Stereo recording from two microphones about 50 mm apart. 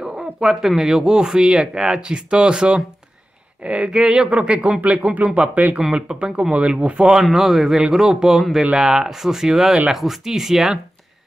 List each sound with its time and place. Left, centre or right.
0.0 s speech: centre
5.8 s speech: centre
7.2 s speech: centre